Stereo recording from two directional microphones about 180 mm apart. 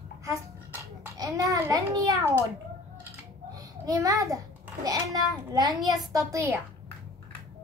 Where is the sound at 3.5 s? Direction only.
20° right (ahead or behind).